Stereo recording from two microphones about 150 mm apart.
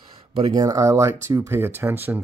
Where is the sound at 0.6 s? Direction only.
20° right (ahead or behind).